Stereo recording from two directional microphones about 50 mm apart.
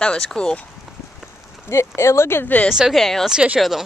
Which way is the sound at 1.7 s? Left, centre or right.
Left.